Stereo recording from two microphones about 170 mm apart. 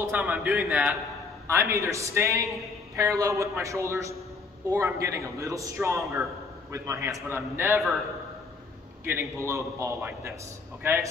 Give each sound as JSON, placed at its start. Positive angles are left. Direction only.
{"t": 0.0, "sound": "a man's voice", "side_deg": -10}
{"t": 1.5, "sound": "a man's voice", "side_deg": -15}
{"t": 9.0, "sound": "a man's voice", "side_deg": -15}